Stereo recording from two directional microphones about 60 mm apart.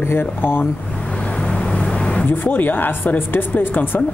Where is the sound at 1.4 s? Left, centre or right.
Centre.